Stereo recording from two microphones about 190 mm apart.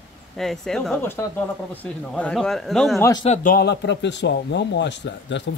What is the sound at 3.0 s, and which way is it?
Speech, 20° left (ahead or behind).